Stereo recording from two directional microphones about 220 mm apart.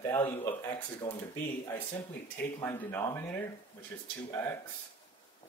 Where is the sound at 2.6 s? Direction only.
10° left (ahead or behind).